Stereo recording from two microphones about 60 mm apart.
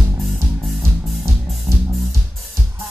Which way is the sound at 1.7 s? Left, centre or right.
Right.